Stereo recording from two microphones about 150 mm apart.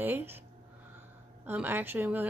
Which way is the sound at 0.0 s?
15° right (ahead or behind).